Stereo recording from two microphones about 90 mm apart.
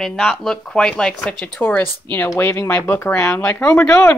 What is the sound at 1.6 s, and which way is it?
Speech, 20° left (ahead or behind).